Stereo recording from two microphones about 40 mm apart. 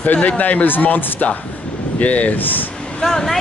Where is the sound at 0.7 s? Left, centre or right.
Left.